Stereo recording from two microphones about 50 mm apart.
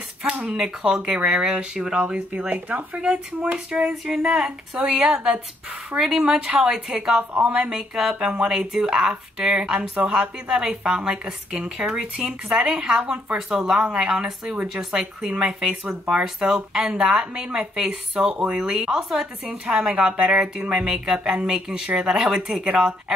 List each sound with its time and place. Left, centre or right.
0.2 s speech: right
2.5 s speech: right
3.9 s speech: centre
7.7 s speech: centre